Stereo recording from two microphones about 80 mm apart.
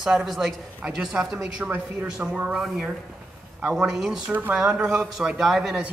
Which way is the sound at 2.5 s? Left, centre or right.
Centre.